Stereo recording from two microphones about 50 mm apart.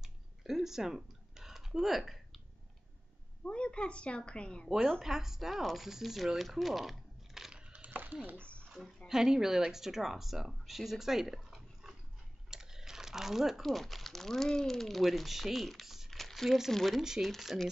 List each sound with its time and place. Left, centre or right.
0.0 s a sound: centre
3.4 s a woman's voice: left
4.6 s speech: centre
7.5 s a sound: right
7.9 s speech: right
8.7 s speech: centre
9.1 s speech: centre
17.0 s speech: centre
17.3 s speech: centre